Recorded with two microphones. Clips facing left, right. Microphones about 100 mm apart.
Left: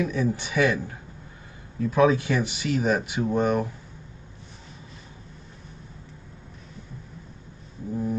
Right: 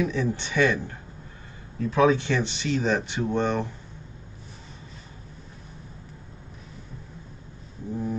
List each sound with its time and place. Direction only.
0.1 s speech: 5° left (ahead or behind)
1.8 s speech: 5° left (ahead or behind)
7.9 s music: 5° left (ahead or behind)